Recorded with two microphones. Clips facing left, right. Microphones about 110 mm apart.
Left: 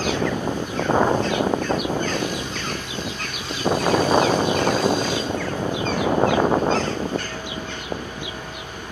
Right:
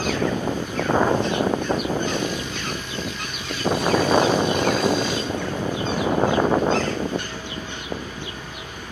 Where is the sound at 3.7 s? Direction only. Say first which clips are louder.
Left 1 dB; 35° left (ahead or behind).